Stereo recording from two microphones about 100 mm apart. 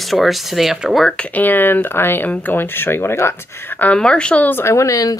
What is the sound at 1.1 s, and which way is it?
Speech, 15° left (ahead or behind).